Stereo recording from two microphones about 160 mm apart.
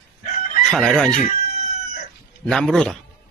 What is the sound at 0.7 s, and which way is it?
Speech, 5° left (ahead or behind).